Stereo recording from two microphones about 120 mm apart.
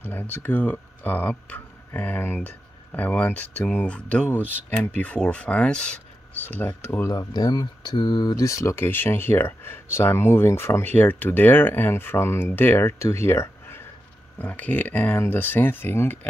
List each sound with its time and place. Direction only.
0.0 s speech: 15° left (ahead or behind)
6.8 s speech: 20° left (ahead or behind)
7.1 s speech: 35° left (ahead or behind); by 16.2 s 20° left (ahead or behind)